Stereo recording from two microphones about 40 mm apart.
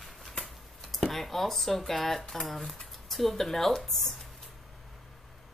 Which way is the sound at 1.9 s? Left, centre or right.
Centre.